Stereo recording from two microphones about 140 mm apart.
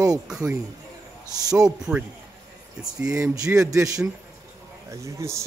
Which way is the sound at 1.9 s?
15° right (ahead or behind).